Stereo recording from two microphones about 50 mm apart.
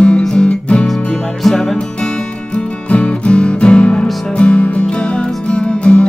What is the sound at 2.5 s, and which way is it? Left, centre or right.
Music, left.